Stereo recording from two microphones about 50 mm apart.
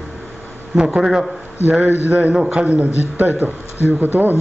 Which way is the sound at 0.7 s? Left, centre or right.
Centre.